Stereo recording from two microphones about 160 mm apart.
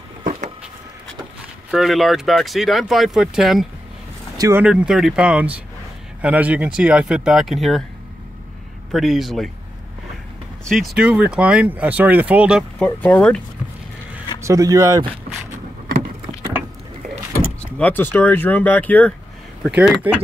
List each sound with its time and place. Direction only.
1.7 s speech: centre (ahead or behind)
4.4 s speech: 15° right (ahead or behind)
4.6 s speech: 5° right (ahead or behind)
8.9 s speech: centre (ahead or behind)
11.0 s speech: 5° right (ahead or behind)
12.8 s speech: 10° left (ahead or behind)
14.4 s speech: 20° right (ahead or behind)
17.7 s speech: 10° left (ahead or behind)
19.6 s speech: 5° right (ahead or behind)